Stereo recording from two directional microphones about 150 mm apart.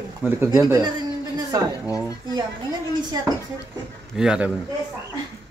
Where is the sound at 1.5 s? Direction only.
25° right (ahead or behind).